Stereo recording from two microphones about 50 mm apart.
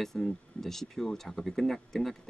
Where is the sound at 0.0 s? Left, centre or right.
Centre.